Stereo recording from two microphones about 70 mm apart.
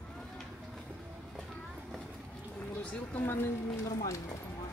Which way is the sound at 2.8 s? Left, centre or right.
Centre.